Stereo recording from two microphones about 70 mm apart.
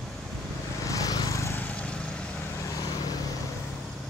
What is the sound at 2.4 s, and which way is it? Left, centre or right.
Vehicle, left.